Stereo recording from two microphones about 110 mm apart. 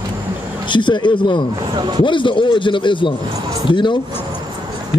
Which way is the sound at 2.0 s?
50° left (ahead or behind).